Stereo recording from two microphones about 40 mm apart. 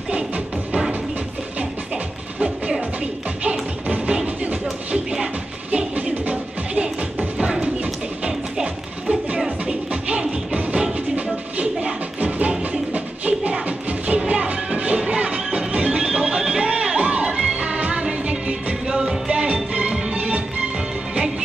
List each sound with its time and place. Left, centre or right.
3.4 s music: right
6.0 s music: right
10.0 s music: right